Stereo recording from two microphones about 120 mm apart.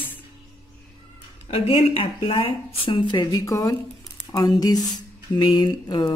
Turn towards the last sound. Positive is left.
turn(degrees=35)  # may be behind; listen again after turning